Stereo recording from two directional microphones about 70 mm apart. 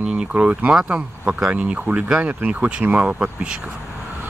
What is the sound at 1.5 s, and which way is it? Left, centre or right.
Speech, right.